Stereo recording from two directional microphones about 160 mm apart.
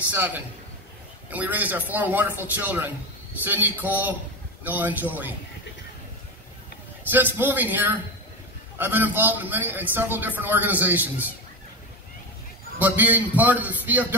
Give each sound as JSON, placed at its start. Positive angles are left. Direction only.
{"t": 0.1, "sound": "a man's voice", "side_deg": -10}
{"t": 7.1, "sound": "a man's voice", "side_deg": -10}
{"t": 12.7, "sound": "a man's voice", "side_deg": -10}